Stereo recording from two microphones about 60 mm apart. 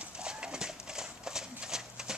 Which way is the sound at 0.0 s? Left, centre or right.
Centre.